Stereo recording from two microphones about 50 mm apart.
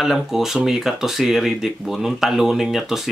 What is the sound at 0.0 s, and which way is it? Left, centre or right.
Speech, centre.